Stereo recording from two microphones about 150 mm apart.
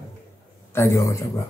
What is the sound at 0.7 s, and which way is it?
Speech, 20° left (ahead or behind).